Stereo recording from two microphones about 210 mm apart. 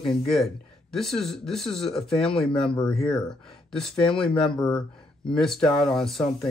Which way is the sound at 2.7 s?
20° left (ahead or behind).